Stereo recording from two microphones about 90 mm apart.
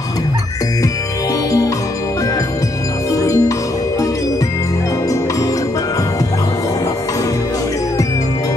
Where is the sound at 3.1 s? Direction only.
40° left (ahead or behind).